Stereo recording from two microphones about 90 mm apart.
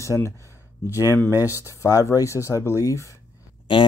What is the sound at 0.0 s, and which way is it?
Speech, 35° left (ahead or behind).